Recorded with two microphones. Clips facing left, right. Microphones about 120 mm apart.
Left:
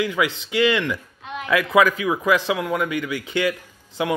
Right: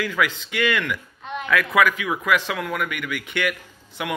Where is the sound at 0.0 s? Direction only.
20° left (ahead or behind).